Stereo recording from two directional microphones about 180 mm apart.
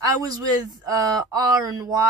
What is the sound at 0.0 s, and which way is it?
Speech, 20° right (ahead or behind).